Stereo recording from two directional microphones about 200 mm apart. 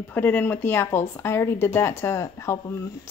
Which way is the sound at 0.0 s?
10° left (ahead or behind).